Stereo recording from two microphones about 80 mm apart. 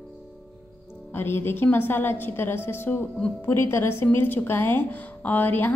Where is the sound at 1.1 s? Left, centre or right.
Left.